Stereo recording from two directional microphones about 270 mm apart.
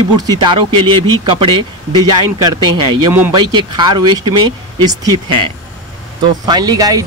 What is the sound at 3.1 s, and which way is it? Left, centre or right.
Speech, centre.